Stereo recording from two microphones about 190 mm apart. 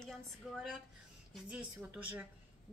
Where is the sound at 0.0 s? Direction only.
Centre (ahead or behind).